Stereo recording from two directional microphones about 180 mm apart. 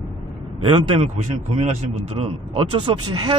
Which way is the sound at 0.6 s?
30° right (ahead or behind).